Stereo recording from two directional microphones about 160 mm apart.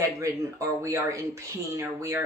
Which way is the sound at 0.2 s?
20° right (ahead or behind).